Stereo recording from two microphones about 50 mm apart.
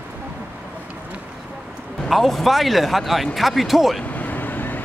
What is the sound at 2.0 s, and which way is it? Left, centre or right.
Speech, centre.